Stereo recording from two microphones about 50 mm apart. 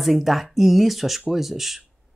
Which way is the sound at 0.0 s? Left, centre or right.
Centre.